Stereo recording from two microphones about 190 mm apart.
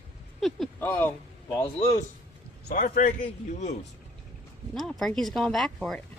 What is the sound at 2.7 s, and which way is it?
A man's voice, 45° left (ahead or behind).